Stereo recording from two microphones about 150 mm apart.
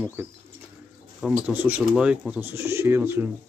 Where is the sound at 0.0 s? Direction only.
15° right (ahead or behind).